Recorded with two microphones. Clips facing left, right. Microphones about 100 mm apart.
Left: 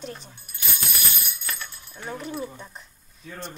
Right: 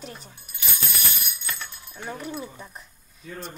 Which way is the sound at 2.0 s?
Centre (ahead or behind).